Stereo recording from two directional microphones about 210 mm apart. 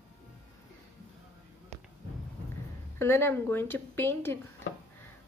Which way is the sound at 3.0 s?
10° left (ahead or behind).